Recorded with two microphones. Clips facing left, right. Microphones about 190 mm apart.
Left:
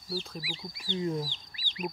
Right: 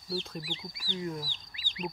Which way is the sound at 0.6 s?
20° left (ahead or behind).